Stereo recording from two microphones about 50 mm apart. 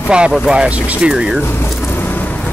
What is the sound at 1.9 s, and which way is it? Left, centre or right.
Vehicle, left.